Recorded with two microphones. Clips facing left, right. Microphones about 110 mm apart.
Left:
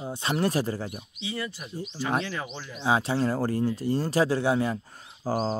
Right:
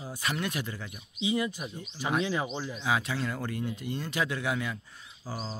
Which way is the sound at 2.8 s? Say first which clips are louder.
Left 7 dB; 30° left (ahead or behind).